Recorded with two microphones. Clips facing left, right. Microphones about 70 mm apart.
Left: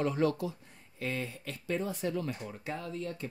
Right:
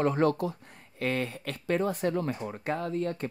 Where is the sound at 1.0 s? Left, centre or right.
Right.